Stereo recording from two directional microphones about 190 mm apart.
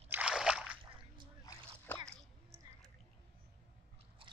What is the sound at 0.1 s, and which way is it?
Slosh, 5° right (ahead or behind).